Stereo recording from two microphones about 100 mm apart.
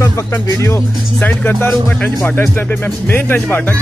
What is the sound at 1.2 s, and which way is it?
Music, 15° left (ahead or behind).